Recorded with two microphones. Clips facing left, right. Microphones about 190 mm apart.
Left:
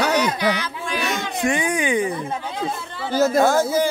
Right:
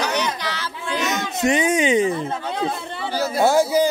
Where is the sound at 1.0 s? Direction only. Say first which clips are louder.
Right 2 dB; 20° right (ahead or behind).